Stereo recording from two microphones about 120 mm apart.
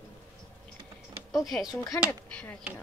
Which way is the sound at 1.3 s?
Centre (ahead or behind).